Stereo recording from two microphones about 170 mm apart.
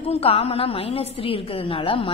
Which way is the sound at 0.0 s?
35° left (ahead or behind).